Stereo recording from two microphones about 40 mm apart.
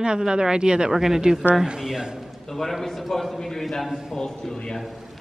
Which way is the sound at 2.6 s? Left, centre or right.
Centre.